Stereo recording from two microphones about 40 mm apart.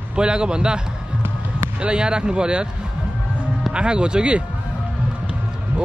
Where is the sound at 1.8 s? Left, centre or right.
Right.